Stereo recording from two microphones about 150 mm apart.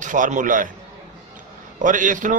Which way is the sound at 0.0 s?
60° right (ahead or behind).